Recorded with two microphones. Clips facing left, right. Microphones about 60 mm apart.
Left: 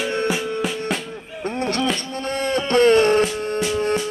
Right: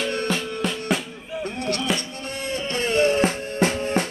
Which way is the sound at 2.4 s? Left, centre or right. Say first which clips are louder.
Left 10 dB; left.